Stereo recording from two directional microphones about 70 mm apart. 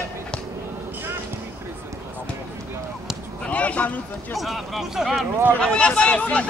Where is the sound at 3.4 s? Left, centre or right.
Centre.